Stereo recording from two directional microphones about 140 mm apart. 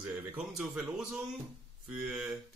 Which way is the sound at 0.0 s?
5° right (ahead or behind).